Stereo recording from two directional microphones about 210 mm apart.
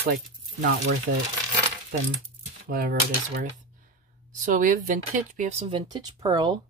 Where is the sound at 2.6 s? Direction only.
45° right (ahead or behind).